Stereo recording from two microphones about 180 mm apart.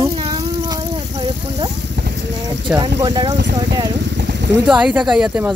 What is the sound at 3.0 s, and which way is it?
Speech, 25° right (ahead or behind).